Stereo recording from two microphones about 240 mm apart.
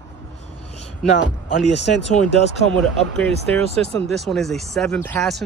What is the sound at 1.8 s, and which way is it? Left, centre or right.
Speech, left.